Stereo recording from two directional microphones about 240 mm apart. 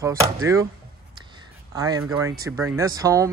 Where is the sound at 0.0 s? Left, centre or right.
Centre.